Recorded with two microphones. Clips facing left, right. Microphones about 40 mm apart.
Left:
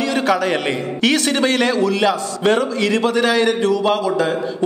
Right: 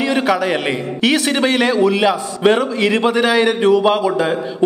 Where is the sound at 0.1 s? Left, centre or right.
Centre.